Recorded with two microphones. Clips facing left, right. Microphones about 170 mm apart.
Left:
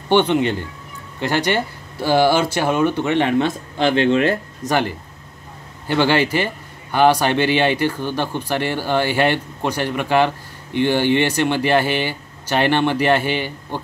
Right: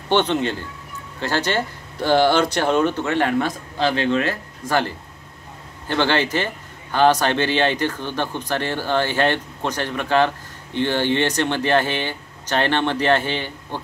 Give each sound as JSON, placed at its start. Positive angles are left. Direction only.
{"t": 0.1, "sound": "speech", "side_deg": 15}
{"t": 5.9, "sound": "speech", "side_deg": 10}